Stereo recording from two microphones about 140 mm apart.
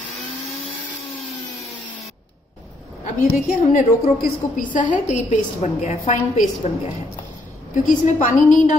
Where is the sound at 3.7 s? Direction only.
70° left (ahead or behind); by 6.4 s 55° left (ahead or behind).